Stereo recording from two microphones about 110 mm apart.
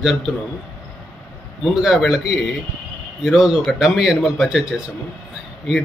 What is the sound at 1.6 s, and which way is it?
Speech, 5° right (ahead or behind).